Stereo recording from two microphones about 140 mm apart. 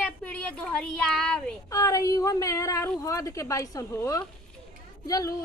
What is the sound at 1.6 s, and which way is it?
A woman's voice, 25° left (ahead or behind).